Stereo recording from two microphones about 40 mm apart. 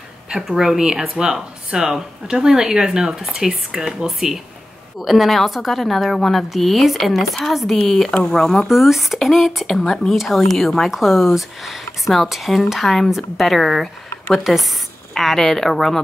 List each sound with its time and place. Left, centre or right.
0.5 s a woman's voice: centre
8.1 s speech: centre
8.6 s speech: centre
9.7 s a woman's voice: centre
15.1 s a woman's voice: centre